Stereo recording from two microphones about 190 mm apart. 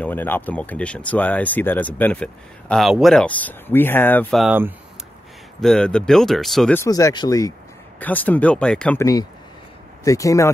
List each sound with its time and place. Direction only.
0.0 s speech: 10° left (ahead or behind); by 4.7 s 10° right (ahead or behind)
5.6 s speech: 5° left (ahead or behind)
6.8 s speech: 15° left (ahead or behind)
10.0 s speech: 15° left (ahead or behind)